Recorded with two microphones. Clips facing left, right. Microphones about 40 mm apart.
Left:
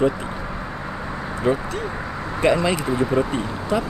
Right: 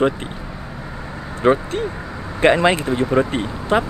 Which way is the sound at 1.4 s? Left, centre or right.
Right.